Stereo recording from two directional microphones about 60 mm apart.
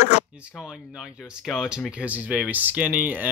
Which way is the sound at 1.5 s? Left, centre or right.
Centre.